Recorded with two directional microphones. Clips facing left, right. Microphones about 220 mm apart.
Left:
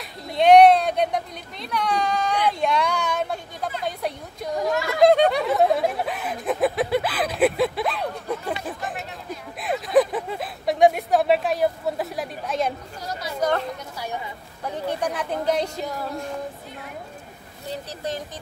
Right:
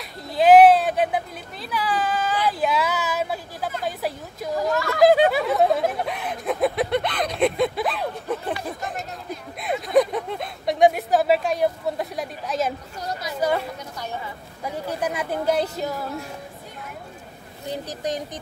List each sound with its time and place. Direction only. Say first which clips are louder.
0.3 s a sound: even; 5° right (ahead or behind)
3.8 s a woman's voice: right 1 dB; 5° right (ahead or behind)
5.0 s snicker: even; 5° right (ahead or behind)
9.6 s a sound: even; centre (ahead or behind)
13.4 s a woman's voice: even; 10° right (ahead or behind)
17.8 s a woman's voice: right 3 dB; 15° right (ahead or behind)